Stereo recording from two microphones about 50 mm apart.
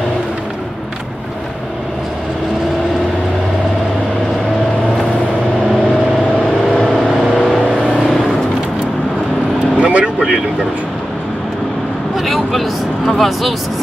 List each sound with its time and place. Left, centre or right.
6.7 s vehicle: centre
9.8 s vehicle: right
12.2 s vehicle: centre